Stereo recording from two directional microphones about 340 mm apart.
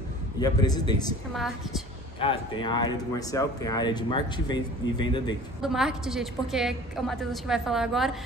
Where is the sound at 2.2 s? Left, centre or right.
Centre.